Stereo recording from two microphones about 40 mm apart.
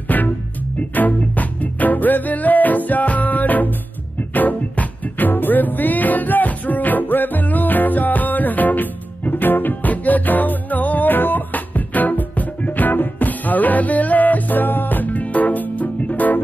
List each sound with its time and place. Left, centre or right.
0.1 s music: left